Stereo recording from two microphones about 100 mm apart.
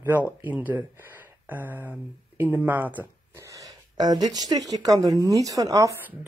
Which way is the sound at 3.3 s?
35° right (ahead or behind).